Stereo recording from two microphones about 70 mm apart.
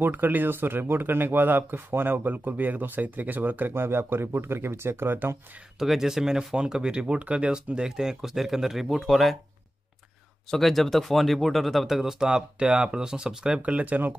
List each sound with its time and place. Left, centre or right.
0.0 s speech: right
5.8 s speech: centre
10.5 s speech: centre; by 14.1 s right